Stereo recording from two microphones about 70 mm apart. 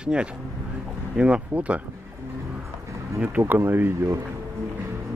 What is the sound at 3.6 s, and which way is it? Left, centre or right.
Speech, right.